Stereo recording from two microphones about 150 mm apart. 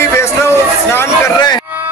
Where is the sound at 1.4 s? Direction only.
25° left (ahead or behind).